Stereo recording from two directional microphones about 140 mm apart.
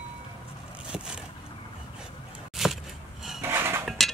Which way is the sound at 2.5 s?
Centre (ahead or behind).